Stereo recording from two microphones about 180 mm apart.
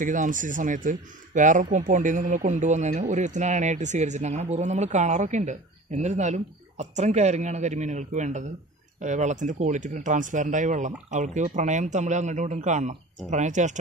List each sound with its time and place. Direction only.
0.0 s speech: 45° right (ahead or behind)